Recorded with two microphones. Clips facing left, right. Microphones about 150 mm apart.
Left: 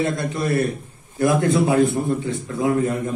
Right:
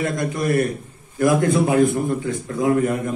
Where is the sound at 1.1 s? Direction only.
30° left (ahead or behind).